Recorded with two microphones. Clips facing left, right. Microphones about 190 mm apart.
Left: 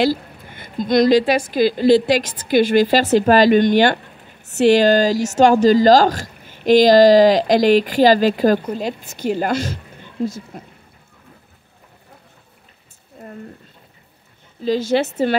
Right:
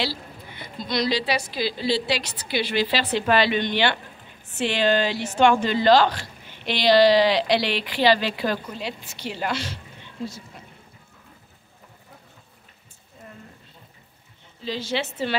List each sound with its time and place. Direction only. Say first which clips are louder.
0.0 s speech: left 11 dB; 50° left (ahead or behind)
13.2 s a sound: left 8 dB; 60° left (ahead or behind)
14.6 s speech: left 10 dB; 45° left (ahead or behind)